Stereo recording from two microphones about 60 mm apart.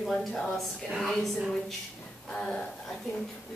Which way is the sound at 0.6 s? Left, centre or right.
Centre.